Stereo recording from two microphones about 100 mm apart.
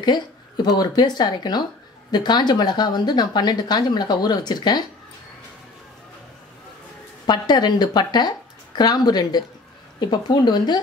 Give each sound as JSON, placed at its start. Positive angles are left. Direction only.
{"t": 0.0, "sound": "a sound", "side_deg": 45}
{"t": 0.7, "sound": "speech", "side_deg": 45}
{"t": 7.2, "sound": "speech", "side_deg": 45}